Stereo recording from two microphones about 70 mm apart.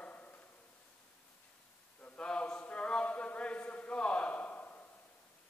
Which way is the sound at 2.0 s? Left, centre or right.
Centre.